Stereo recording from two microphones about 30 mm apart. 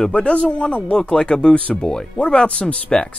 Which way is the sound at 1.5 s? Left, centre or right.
Left.